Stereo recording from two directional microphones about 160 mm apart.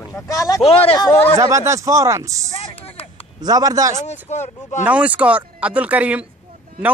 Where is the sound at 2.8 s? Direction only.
40° left (ahead or behind).